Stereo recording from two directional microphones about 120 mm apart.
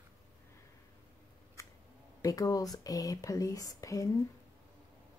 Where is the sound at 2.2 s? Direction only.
30° left (ahead or behind).